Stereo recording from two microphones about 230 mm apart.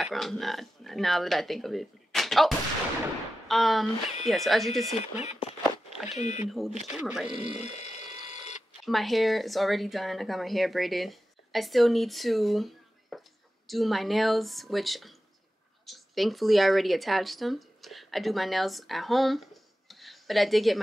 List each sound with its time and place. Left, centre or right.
0.0 s speech: centre
5.0 s speech: left
6.5 s speech: centre
7.3 s a sound: left
8.8 s speech: centre